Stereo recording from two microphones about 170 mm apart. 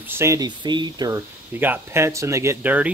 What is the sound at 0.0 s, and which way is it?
Speech, 15° right (ahead or behind).